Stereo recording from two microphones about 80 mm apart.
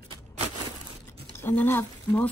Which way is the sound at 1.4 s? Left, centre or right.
Left.